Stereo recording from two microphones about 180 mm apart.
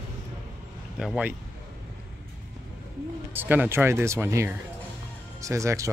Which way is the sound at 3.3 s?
10° right (ahead or behind).